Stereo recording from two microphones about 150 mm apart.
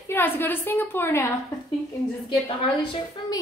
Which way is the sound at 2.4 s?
30° left (ahead or behind).